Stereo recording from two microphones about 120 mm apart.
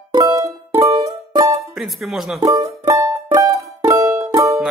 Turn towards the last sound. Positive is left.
turn(degrees=-25)  # may be behind; listen again after turning